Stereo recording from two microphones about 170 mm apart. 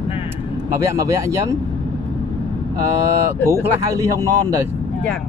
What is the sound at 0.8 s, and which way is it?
Speech, 15° right (ahead or behind).